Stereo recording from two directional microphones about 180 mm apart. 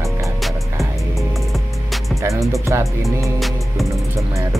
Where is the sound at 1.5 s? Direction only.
Centre (ahead or behind).